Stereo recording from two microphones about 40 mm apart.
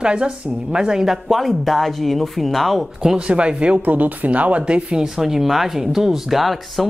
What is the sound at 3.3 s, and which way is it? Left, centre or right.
Speech, right.